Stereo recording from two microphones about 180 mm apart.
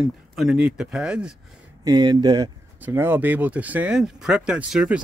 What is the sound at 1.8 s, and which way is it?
Speech, 25° right (ahead or behind).